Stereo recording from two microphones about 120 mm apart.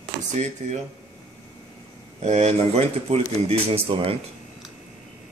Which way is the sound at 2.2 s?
70° right (ahead or behind).